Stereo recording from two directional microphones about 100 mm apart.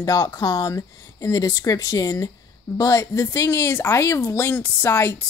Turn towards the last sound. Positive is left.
turn(degrees=25)  # may be behind; listen again after turning